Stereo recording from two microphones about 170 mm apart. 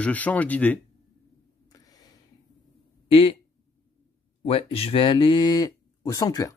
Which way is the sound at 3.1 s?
30° left (ahead or behind).